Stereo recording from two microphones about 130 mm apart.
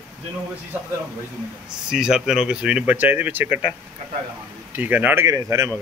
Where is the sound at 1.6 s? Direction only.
5° right (ahead or behind).